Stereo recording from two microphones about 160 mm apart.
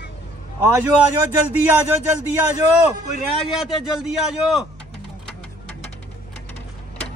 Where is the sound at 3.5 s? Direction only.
Centre (ahead or behind).